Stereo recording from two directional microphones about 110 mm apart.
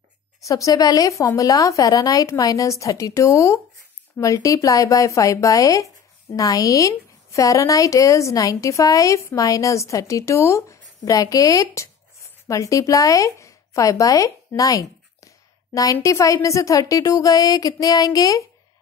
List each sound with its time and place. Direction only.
0.5 s a woman's voice: 30° left (ahead or behind)